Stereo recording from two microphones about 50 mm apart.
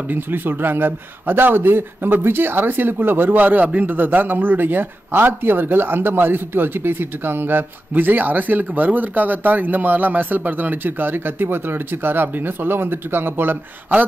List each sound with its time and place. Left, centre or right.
0.1 s speech: right